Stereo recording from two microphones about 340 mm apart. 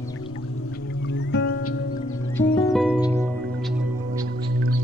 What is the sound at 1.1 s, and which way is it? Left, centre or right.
Music, left.